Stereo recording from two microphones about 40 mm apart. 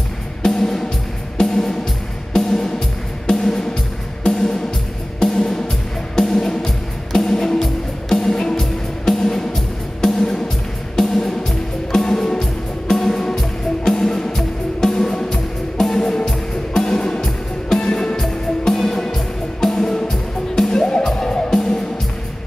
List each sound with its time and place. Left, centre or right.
0.4 s music: centre
2.3 s music: centre